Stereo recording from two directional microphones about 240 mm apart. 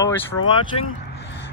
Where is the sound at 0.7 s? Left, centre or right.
Left.